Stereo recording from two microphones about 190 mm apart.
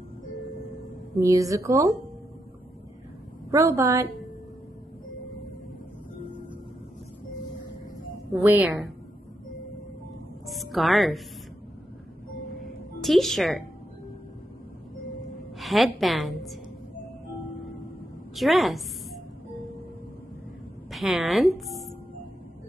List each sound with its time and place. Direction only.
1.2 s a woman's voice: 15° right (ahead or behind)
3.5 s a woman's voice: 15° right (ahead or behind)
8.3 s a woman's voice: 10° right (ahead or behind)
10.4 s music: centre (ahead or behind)
13.0 s a woman's voice: centre (ahead or behind)
15.6 s a woman's voice: centre (ahead or behind)
18.3 s a woman's voice: centre (ahead or behind)
20.9 s a woman's voice: centre (ahead or behind)